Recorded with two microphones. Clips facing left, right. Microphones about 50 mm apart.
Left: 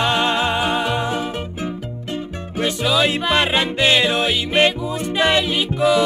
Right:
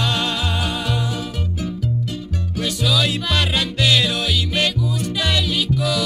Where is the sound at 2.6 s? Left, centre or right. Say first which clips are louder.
Left 3 dB; left.